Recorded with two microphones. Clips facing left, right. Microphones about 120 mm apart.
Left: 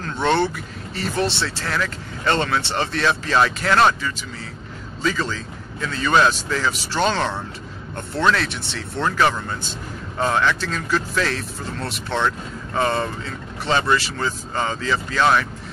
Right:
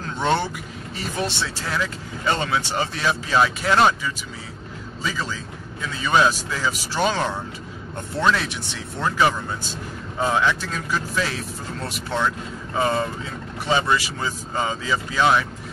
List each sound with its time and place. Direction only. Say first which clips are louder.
0.0 s vehicle: left 3 dB; 10° right (ahead or behind)
0.9 s speech: left 4 dB; 15° right (ahead or behind)